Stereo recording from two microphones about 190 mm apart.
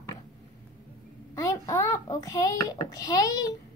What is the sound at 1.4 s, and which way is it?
A child's voice, 15° left (ahead or behind).